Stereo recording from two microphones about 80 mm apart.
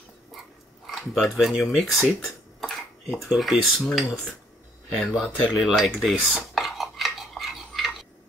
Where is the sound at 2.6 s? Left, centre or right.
Centre.